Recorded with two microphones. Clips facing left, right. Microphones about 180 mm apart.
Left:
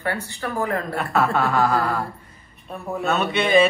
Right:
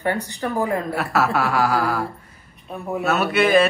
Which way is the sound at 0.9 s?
5° right (ahead or behind).